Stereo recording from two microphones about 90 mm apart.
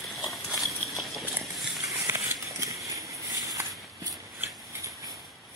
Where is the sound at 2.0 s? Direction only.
35° right (ahead or behind).